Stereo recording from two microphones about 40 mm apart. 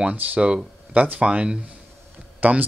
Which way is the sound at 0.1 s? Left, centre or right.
Right.